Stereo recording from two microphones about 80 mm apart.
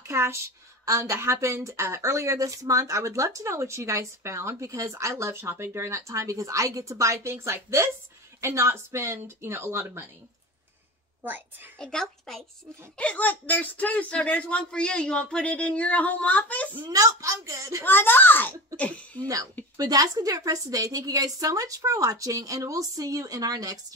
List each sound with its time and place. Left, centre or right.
0.0 s a sound: right
0.8 s speech: right
11.2 s a woman's voice: right
11.8 s speech: centre
12.9 s speech: centre
16.9 s speech: right
17.8 s speech: left
19.8 s a woman's voice: right